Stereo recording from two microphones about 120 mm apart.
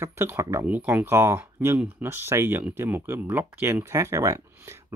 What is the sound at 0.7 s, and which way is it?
Speech, 15° right (ahead or behind).